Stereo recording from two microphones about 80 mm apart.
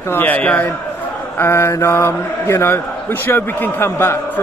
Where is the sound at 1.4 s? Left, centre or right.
Left.